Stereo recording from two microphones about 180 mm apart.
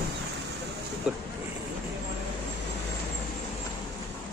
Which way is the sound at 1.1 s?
5° right (ahead or behind).